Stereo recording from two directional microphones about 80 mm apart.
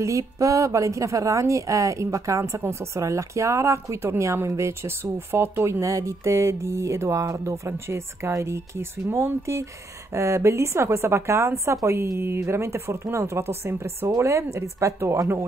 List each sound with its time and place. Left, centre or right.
0.0 s a woman's voice: right